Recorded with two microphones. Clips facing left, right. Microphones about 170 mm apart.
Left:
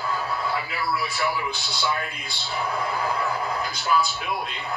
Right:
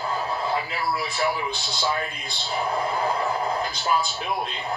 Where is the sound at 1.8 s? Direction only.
35° right (ahead or behind).